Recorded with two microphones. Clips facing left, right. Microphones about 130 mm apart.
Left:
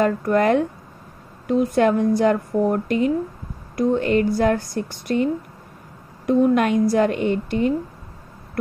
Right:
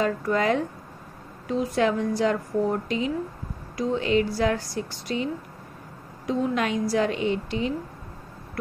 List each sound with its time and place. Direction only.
0.0 s a woman's voice: 55° left (ahead or behind)